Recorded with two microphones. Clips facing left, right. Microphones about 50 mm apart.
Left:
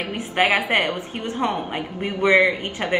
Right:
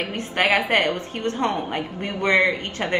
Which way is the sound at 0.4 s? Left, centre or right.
Centre.